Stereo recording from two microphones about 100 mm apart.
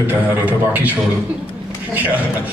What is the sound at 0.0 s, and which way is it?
A man's voice, 15° right (ahead or behind).